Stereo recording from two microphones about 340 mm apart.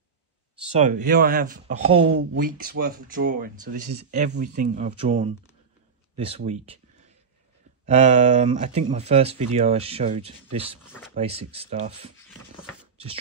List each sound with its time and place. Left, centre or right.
0.7 s speech: right
7.8 s speech: centre
12.9 s a sound: centre